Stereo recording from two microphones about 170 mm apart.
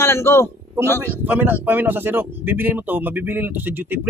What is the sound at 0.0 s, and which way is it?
A man's voice, 15° left (ahead or behind).